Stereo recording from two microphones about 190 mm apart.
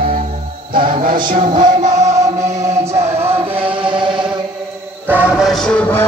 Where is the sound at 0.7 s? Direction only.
25° right (ahead or behind).